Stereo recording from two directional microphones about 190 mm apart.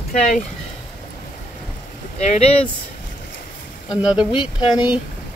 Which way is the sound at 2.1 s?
35° left (ahead or behind).